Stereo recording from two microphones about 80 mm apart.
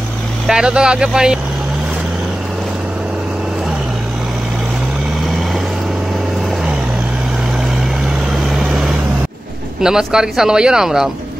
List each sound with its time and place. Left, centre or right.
0.5 s speech: centre
8.5 s vehicle: centre
9.8 s speech: centre